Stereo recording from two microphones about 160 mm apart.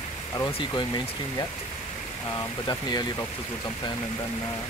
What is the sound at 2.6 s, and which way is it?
Speech, 25° left (ahead or behind).